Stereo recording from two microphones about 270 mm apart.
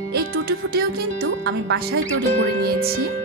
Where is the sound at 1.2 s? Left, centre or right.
Right.